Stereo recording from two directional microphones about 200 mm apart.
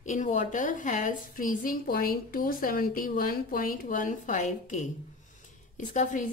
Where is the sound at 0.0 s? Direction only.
40° left (ahead or behind).